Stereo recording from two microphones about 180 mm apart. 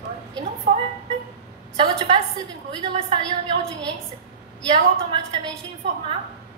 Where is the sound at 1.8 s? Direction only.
25° right (ahead or behind).